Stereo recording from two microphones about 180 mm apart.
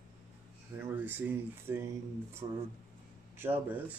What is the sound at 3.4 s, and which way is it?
Speech, 10° right (ahead or behind).